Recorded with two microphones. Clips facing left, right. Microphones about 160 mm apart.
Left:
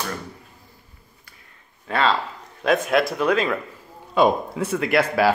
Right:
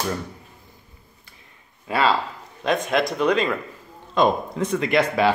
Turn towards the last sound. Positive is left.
turn(degrees=5)  # may be behind; listen again after turning